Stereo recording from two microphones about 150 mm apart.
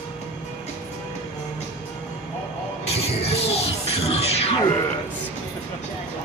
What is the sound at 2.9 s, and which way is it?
Music, 45° left (ahead or behind).